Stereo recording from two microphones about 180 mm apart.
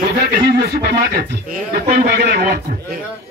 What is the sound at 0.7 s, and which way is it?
A man's voice, 65° right (ahead or behind).